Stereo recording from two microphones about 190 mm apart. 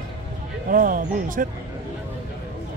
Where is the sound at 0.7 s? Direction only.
45° right (ahead or behind).